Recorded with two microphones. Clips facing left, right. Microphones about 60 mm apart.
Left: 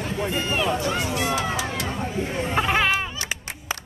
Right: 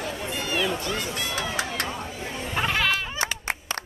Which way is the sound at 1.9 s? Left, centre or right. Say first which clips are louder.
Left 5 dB; left.